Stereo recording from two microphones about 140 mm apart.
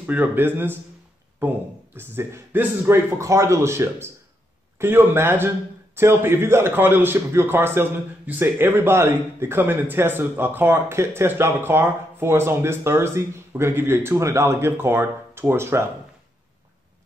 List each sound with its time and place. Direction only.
0.0 s a man's voice: 10° right (ahead or behind)
2.0 s a man's voice: 15° right (ahead or behind)